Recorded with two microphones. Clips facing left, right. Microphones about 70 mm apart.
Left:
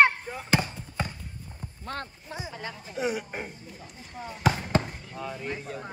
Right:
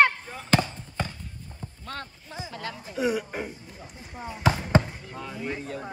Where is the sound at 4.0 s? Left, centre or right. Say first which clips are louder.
Right 2 dB; centre.